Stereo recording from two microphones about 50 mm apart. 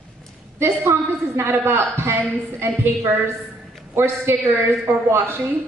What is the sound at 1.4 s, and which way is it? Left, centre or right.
A man's voice, right.